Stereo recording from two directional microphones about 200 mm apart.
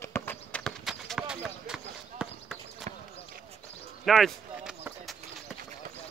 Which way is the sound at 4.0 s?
Centre (ahead or behind).